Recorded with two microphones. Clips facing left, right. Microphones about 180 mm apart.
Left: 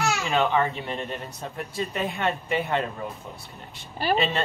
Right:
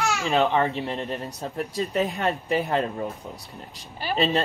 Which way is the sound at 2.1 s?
40° right (ahead or behind).